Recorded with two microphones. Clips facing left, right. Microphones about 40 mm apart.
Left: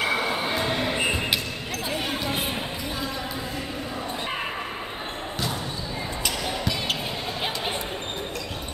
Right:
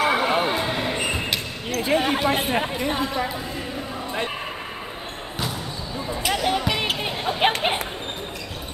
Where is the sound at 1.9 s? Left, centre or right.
Right.